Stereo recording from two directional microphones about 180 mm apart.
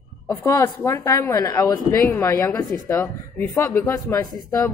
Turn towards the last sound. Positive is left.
turn(degrees=20)  # may be behind; listen again after turning